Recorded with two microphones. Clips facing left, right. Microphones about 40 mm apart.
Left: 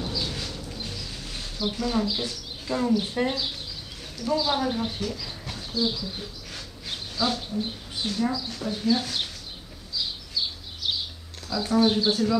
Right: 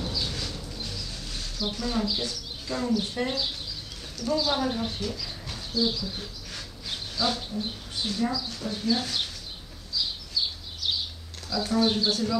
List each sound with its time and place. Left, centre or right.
0.0 s a sound: centre
0.7 s music: centre
1.7 s speech: centre
7.9 s a sound: centre
8.3 s speech: centre
11.5 s speech: centre